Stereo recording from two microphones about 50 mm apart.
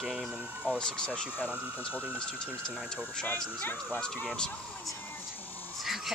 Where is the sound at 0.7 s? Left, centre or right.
Centre.